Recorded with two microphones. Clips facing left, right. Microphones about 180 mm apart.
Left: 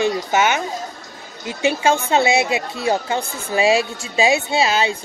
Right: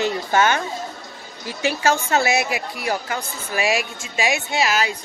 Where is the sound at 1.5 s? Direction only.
20° left (ahead or behind).